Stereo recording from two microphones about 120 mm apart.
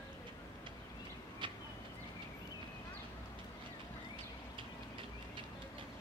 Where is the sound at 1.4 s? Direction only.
45° right (ahead or behind).